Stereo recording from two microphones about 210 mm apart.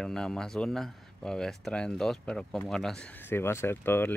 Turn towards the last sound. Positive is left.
turn(degrees=10)  # may be behind; listen again after turning